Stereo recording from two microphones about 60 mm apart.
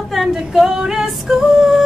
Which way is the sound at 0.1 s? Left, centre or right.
Centre.